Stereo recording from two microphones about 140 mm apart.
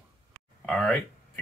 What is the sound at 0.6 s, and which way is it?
Speech, 5° left (ahead or behind).